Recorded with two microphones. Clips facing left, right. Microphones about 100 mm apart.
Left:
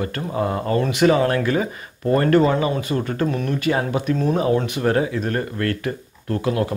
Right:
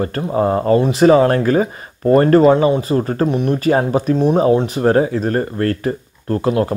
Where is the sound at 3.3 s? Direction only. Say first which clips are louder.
Right 6 dB; 20° right (ahead or behind).